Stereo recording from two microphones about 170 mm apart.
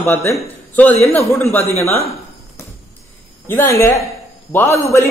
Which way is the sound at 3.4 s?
15° left (ahead or behind).